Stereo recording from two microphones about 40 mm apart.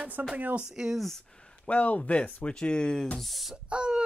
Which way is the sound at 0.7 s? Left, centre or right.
Centre.